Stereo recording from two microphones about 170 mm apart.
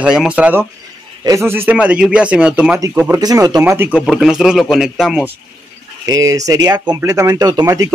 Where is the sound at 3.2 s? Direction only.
20° right (ahead or behind).